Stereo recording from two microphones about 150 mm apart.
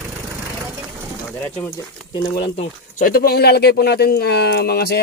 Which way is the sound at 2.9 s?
70° left (ahead or behind).